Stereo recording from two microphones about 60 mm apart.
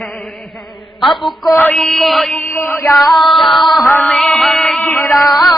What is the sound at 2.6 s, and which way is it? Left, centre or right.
Chant, left.